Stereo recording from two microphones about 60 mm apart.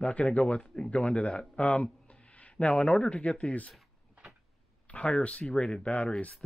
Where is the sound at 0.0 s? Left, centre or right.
Left.